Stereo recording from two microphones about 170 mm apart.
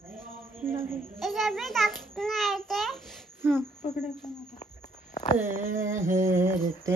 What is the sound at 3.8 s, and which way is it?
Speech, 35° left (ahead or behind).